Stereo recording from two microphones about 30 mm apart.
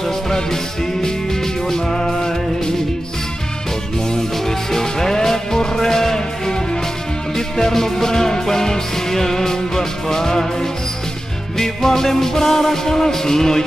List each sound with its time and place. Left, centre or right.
0.0 s music: centre
4.1 s music: centre